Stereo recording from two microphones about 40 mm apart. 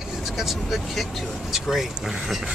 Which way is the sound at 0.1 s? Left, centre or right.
Centre.